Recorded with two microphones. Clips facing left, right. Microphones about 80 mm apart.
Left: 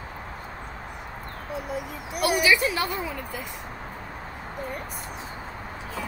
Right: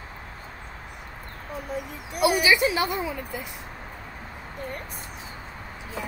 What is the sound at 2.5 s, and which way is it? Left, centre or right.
Speech, centre.